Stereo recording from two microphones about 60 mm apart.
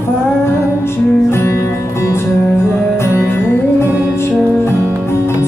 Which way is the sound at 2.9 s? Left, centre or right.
Left.